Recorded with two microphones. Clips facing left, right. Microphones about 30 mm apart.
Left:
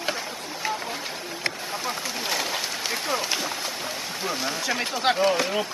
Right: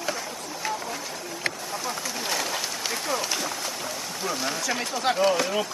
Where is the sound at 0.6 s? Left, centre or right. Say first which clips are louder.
Left 1 dB; centre.